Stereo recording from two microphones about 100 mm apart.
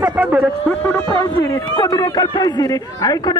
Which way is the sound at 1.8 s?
45° left (ahead or behind).